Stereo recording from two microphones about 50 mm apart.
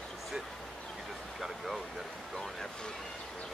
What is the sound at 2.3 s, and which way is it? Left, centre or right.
Speech, centre.